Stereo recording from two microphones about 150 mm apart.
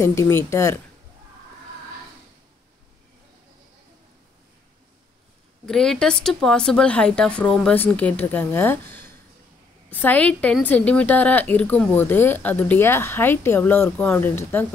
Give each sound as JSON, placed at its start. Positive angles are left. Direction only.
{"t": 0.0, "sound": "a woman's voice", "side_deg": 20}
{"t": 5.7, "sound": "speech", "side_deg": 5}
{"t": 9.8, "sound": "a woman's voice", "side_deg": 10}